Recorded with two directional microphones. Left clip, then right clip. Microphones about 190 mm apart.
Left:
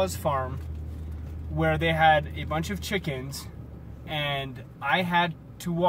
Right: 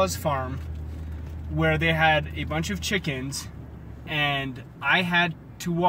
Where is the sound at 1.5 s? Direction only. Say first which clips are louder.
Right 2 dB; 5° left (ahead or behind).